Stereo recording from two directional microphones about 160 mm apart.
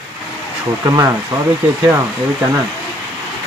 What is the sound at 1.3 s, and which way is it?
Speech, 25° right (ahead or behind).